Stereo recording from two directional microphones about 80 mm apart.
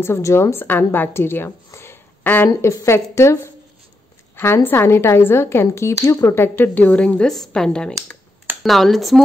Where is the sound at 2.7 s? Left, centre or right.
Left.